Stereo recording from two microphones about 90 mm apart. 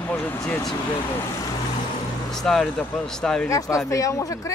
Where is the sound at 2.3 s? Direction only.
5° left (ahead or behind).